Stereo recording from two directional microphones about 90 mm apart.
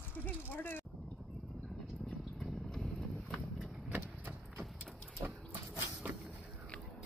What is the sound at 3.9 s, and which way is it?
Vehicle, 20° right (ahead or behind).